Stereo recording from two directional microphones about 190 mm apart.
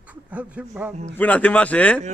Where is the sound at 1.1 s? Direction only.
10° left (ahead or behind).